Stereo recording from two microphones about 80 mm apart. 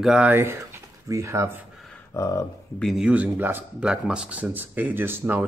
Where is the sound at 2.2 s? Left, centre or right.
Left.